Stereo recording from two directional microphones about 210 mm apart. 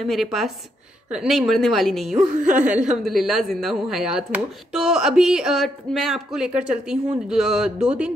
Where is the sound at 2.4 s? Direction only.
40° right (ahead or behind).